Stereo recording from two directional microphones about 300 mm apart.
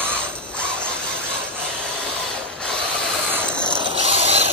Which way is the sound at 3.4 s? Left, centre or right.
Centre.